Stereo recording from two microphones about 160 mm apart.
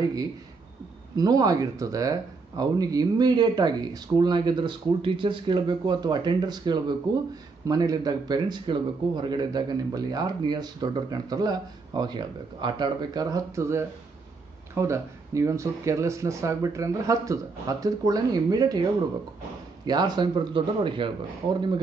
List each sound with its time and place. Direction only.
1.1 s speech: 25° right (ahead or behind)
19.9 s speech: 25° right (ahead or behind)